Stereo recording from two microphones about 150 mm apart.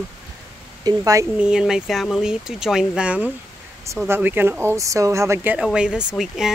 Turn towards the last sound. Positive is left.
turn(degrees=-5)  # may be behind; listen again after turning